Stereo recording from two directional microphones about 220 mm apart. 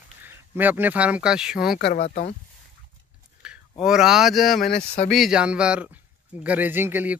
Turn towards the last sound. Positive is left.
turn(degrees=-10)  # may be behind; listen again after turning